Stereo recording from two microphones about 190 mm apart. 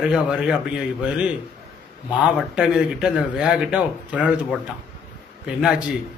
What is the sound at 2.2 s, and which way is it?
A man's voice, 5° right (ahead or behind).